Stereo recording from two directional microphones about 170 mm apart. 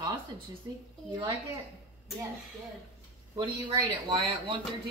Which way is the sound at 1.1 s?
25° right (ahead or behind).